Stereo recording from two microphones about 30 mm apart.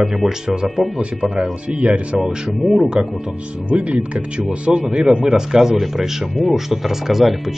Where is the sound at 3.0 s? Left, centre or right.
Right.